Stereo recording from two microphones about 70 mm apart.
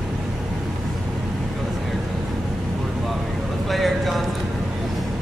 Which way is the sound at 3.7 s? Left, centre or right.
Centre.